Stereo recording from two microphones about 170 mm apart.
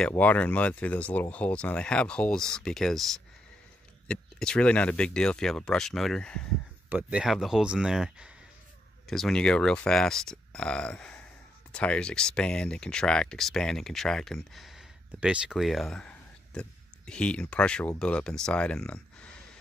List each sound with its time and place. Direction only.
0.1 s speech: 10° left (ahead or behind)
6.9 s speech: 10° right (ahead or behind)